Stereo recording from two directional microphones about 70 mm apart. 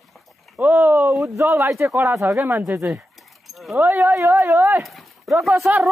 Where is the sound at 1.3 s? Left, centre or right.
Right.